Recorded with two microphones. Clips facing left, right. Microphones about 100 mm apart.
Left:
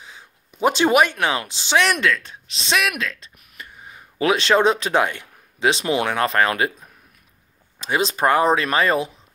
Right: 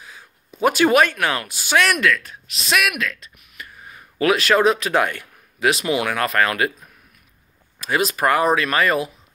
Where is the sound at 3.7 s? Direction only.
20° left (ahead or behind).